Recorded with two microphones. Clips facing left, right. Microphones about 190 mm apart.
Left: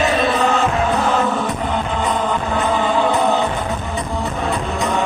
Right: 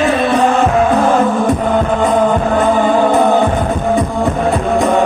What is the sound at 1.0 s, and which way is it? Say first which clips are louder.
Music: right 6 dB; 50° right (ahead or behind).